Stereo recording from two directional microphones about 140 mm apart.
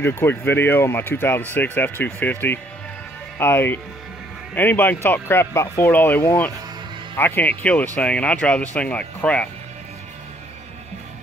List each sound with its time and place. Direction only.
0.0 s speech: 15° left (ahead or behind)